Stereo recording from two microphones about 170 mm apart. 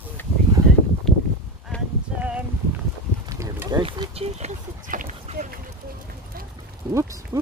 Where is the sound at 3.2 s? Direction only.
20° right (ahead or behind).